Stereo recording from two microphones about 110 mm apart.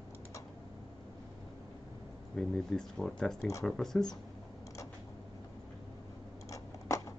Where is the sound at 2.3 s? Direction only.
5° left (ahead or behind).